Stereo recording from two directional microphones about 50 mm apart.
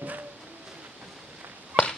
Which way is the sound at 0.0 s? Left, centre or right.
Right.